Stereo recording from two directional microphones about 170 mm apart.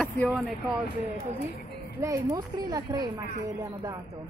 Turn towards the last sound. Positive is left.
turn(degrees=-20)  # may be behind; listen again after turning